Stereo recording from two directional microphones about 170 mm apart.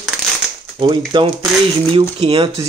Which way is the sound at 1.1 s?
30° right (ahead or behind).